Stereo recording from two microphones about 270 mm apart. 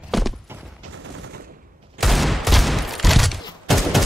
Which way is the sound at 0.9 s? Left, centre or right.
Right.